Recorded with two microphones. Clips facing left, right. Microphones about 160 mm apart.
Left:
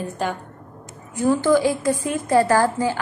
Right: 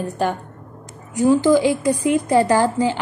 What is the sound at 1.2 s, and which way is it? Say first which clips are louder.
A woman's voice: right 3 dB; 15° right (ahead or behind).